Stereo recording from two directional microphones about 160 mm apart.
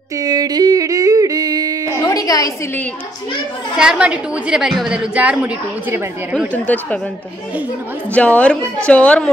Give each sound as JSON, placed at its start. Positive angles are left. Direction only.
{"t": 0.2, "sound": "yodeling", "side_deg": -25}
{"t": 1.9, "sound": "a sound", "side_deg": 20}
{"t": 3.7, "sound": "a woman's voice", "side_deg": -5}
{"t": 6.5, "sound": "a woman's voice", "side_deg": 10}
{"t": 8.1, "sound": "a woman's voice", "side_deg": 10}